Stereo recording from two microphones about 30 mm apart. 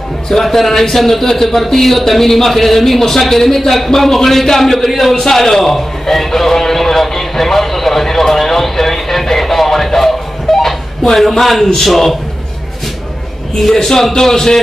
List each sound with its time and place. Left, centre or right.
0.3 s a man's voice: centre
5.1 s a sound: centre
11.7 s a man's voice: centre
13.7 s a man's voice: centre